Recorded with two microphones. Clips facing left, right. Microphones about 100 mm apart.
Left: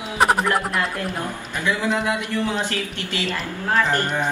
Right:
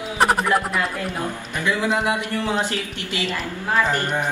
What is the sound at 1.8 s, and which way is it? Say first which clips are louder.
A man's voice: right 2 dB; 15° right (ahead or behind).